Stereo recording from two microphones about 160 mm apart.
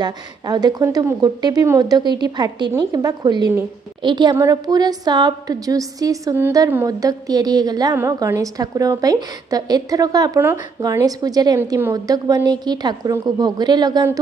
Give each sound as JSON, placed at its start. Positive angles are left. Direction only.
{"t": 0.0, "sound": "a woman's voice", "side_deg": -25}